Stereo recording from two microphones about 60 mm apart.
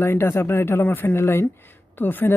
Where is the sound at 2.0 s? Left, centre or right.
Left.